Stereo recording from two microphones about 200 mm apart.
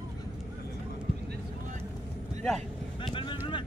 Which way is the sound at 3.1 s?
25° left (ahead or behind).